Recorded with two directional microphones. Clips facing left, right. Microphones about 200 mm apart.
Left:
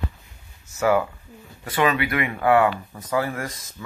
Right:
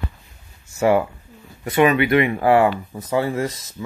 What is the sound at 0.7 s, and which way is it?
Speech, 25° right (ahead or behind).